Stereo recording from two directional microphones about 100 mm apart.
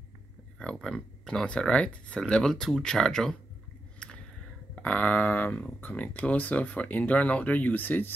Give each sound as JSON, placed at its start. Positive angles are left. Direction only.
{"t": 0.6, "sound": "speech", "side_deg": 5}
{"t": 4.0, "sound": "a sound", "side_deg": 10}
{"t": 4.7, "sound": "speech", "side_deg": 15}